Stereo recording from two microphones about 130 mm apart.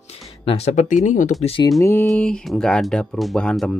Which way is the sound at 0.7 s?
70° left (ahead or behind).